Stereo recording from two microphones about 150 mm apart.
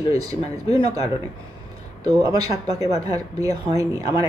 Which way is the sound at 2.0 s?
25° right (ahead or behind).